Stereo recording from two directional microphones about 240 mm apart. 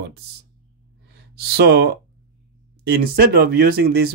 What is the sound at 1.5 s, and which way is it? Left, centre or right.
Speech, right.